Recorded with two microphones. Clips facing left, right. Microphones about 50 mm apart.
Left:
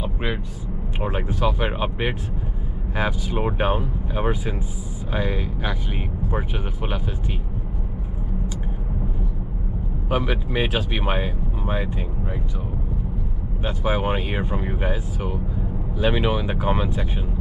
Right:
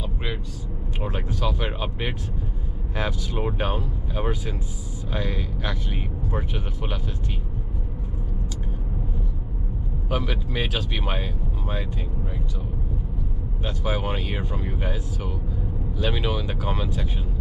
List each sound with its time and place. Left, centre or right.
0.0 s vehicle: centre
1.0 s speech: centre
10.0 s speech: centre
13.6 s speech: centre